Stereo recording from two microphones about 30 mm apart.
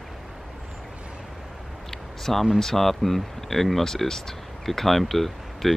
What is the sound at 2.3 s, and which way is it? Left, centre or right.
Speech, centre.